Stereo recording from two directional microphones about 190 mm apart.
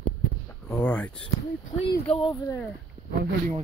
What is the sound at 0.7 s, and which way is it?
Speech, 5° left (ahead or behind).